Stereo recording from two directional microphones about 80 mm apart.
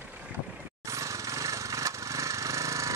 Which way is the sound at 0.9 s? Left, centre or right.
Right.